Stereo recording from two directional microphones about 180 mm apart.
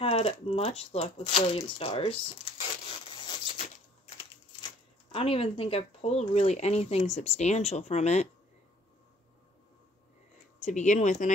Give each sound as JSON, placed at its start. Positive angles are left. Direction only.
{"t": 0.0, "sound": "speech", "side_deg": 35}
{"t": 3.3, "sound": "a sound", "side_deg": 30}
{"t": 5.1, "sound": "speech", "side_deg": 30}
{"t": 10.6, "sound": "speech", "side_deg": 40}